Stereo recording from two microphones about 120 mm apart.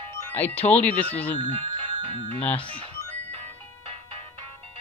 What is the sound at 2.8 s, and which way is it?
Music, 60° right (ahead or behind).